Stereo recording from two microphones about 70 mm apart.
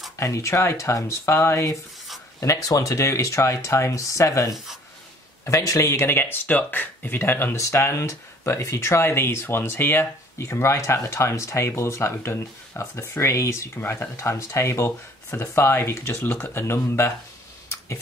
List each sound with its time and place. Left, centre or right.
0.2 s speech: left
2.4 s speech: left
7.5 s speech: left
10.5 s speech: left
13.7 s speech: left
14.1 s speech: left